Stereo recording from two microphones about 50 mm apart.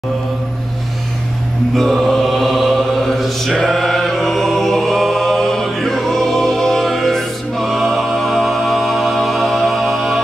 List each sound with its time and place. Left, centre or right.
1.8 s mantra: centre
3.2 s a capella: centre